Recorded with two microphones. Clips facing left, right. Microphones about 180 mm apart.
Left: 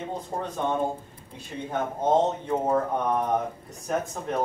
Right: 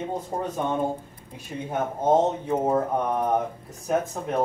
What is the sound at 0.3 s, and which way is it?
Speech, 15° right (ahead or behind).